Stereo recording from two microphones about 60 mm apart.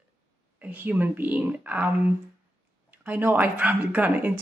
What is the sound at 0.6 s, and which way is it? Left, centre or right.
Speech, right.